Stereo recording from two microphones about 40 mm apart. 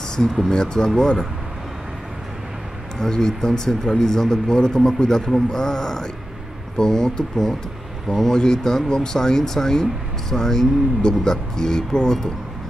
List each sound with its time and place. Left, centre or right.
0.5 s a man's voice: centre
3.0 s a man's voice: centre